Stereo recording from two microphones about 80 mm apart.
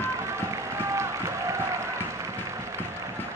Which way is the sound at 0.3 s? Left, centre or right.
Right.